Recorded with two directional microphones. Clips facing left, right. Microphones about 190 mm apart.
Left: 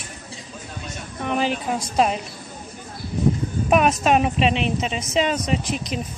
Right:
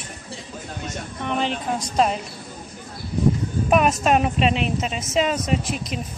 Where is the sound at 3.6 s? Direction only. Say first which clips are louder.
Left 1 dB; centre (ahead or behind).